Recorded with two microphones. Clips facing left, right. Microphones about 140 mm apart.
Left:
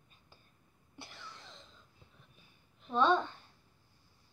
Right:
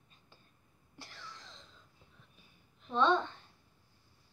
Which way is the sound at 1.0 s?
5° left (ahead or behind).